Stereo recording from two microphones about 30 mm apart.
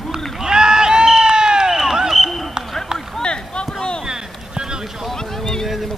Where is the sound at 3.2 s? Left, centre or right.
Left.